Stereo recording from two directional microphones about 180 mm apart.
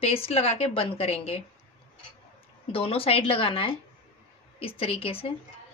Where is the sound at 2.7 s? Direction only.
30° left (ahead or behind).